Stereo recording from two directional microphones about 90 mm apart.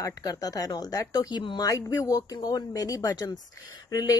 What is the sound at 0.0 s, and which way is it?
Speech, 40° left (ahead or behind).